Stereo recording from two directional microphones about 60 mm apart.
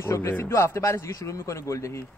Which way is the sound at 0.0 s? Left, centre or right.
Left.